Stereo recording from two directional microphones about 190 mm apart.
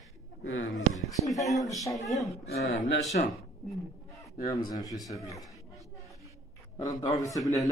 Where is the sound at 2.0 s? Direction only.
20° left (ahead or behind).